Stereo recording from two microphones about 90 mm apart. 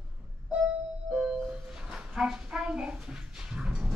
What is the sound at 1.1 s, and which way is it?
Music, 10° right (ahead or behind).